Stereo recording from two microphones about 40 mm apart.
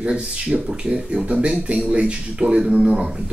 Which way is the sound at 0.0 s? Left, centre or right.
Right.